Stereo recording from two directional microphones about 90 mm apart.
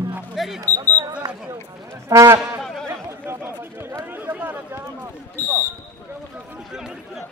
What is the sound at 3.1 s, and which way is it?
Chatter, 30° right (ahead or behind).